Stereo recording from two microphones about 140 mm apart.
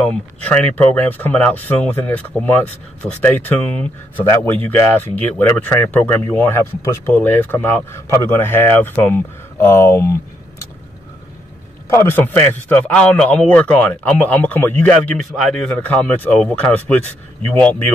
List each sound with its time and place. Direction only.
0.0 s a man's voice: 5° left (ahead or behind)
11.9 s a man's voice: 15° left (ahead or behind)